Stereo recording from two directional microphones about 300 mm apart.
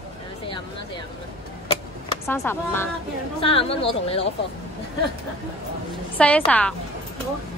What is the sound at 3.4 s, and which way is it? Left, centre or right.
Speech, centre.